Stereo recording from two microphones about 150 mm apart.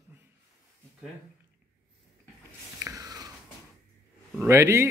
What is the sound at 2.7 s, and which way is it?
Biting, 25° right (ahead or behind).